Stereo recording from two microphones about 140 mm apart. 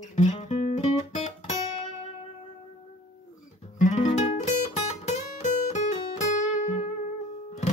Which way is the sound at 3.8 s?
60° left (ahead or behind).